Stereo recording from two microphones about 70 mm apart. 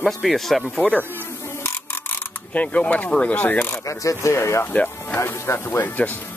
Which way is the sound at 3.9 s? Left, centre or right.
Left.